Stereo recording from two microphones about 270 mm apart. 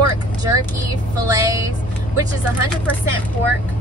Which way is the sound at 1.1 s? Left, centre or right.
Centre.